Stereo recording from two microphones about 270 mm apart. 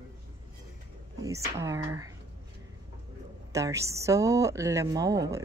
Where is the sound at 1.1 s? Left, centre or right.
Centre.